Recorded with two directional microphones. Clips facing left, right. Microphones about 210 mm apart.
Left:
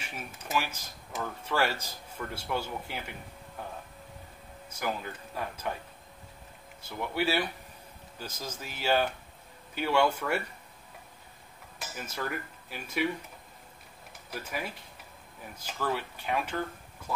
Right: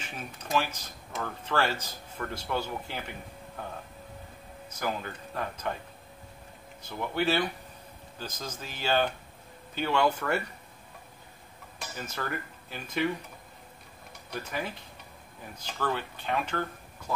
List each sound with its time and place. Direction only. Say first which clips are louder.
0.0 s speech: right 1 dB; 10° left (ahead or behind)
4.7 s speech: right 1 dB; 10° left (ahead or behind)
6.8 s speech: right 1 dB; 10° left (ahead or behind)
11.8 s speech: even; 10° left (ahead or behind)
14.1 s speech: right 2 dB; 5° left (ahead or behind)